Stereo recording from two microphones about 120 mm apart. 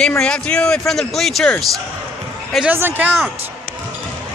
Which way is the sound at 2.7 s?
15° right (ahead or behind).